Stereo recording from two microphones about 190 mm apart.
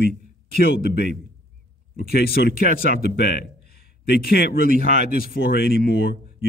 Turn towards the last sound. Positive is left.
turn(degrees=55)  # may be behind; listen again after turning